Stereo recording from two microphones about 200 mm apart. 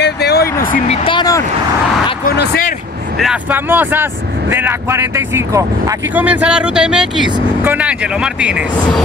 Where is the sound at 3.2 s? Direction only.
5° right (ahead or behind).